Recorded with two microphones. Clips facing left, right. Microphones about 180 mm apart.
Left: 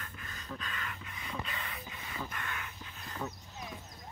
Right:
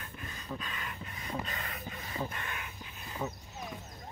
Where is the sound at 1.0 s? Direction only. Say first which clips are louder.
Right 3 dB; 40° right (ahead or behind).